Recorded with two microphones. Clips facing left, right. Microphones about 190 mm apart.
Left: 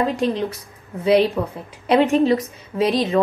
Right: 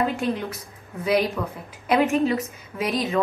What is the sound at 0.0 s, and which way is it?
A woman's voice, 35° left (ahead or behind).